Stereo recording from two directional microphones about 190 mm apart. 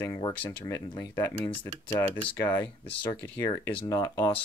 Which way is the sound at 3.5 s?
20° left (ahead or behind).